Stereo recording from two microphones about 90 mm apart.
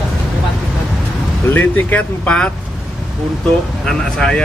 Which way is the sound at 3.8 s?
10° left (ahead or behind).